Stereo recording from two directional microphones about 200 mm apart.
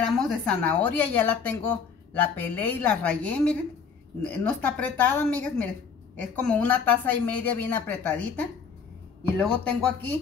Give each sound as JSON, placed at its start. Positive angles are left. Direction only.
{"t": 0.0, "sound": "a woman's voice", "side_deg": 0}